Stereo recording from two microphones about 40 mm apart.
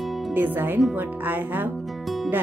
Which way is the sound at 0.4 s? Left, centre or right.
Right.